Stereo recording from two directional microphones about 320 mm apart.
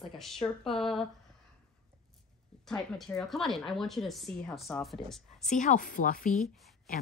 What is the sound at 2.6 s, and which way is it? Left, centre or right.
A woman's voice, centre.